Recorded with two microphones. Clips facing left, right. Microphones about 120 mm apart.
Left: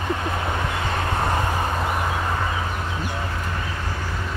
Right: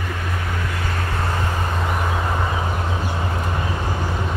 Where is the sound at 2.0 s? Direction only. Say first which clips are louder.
Right 1 dB; 20° right (ahead or behind).